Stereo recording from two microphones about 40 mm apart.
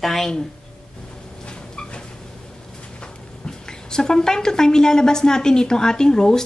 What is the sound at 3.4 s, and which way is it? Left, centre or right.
Speech, centre.